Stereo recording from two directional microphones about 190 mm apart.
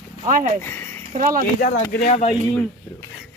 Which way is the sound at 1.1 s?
45° right (ahead or behind).